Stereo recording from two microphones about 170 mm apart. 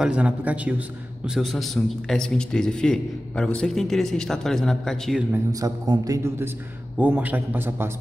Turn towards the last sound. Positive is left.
turn(degrees=-15)  # may be behind; listen again after turning